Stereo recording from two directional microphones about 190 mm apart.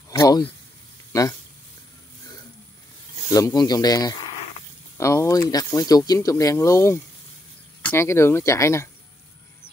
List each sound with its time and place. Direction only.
0.2 s speech: 15° left (ahead or behind)
3.3 s speech: 20° left (ahead or behind)